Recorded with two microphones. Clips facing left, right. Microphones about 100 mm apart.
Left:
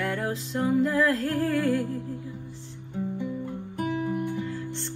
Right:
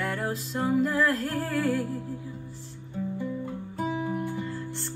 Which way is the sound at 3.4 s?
15° right (ahead or behind).